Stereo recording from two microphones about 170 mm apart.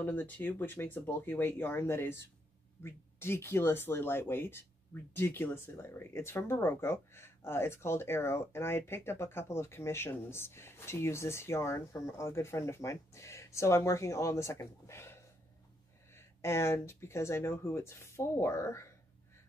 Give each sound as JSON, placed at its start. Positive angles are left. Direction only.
{"t": 0.0, "sound": "speech", "side_deg": 10}
{"t": 16.2, "sound": "speech", "side_deg": 15}